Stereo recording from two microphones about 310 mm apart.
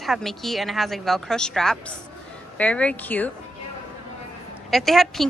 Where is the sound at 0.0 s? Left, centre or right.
Centre.